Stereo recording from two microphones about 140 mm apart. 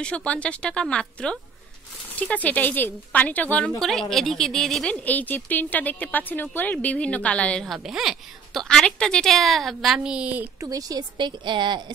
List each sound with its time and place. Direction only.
0.0 s a woman's voice: 10° left (ahead or behind)
7.6 s a woman's voice: 5° right (ahead or behind)
10.6 s a woman's voice: 25° right (ahead or behind)